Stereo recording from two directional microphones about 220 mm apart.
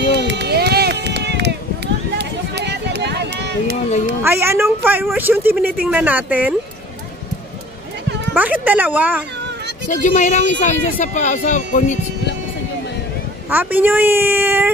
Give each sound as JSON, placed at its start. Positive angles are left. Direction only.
{"t": 0.1, "sound": "run", "side_deg": -50}
{"t": 4.2, "sound": "speech", "side_deg": -10}
{"t": 8.4, "sound": "speech", "side_deg": -5}
{"t": 9.8, "sound": "speech", "side_deg": 35}
{"t": 13.5, "sound": "speech", "side_deg": -10}